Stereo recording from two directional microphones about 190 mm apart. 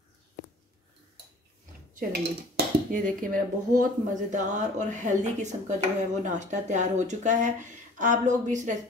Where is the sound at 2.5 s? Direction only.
45° right (ahead or behind).